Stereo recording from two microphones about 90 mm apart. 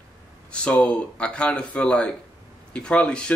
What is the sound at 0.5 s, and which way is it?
Speech, 10° left (ahead or behind).